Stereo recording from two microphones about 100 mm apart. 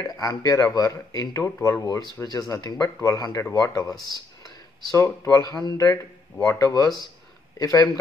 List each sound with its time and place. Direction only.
0.0 s speech: 40° left (ahead or behind)
4.9 s speech: 30° left (ahead or behind)